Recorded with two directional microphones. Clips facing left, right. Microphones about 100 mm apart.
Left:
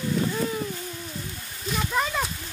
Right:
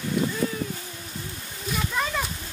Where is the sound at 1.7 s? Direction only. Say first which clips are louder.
Left 1 dB; 5° left (ahead or behind).